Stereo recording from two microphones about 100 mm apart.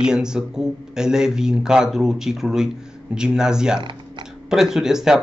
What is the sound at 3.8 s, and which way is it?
Typing, 50° right (ahead or behind).